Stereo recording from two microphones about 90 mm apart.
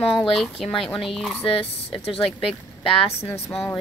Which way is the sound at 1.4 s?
90° left.